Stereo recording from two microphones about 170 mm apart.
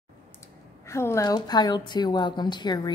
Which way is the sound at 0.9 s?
15° left (ahead or behind).